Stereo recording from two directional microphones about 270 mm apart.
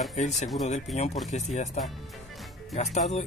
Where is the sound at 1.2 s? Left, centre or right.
Left.